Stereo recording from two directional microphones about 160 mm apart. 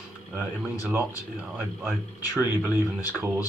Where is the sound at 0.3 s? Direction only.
5° right (ahead or behind).